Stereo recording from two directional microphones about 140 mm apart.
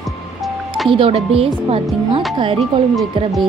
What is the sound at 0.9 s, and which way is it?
Speech, 40° right (ahead or behind).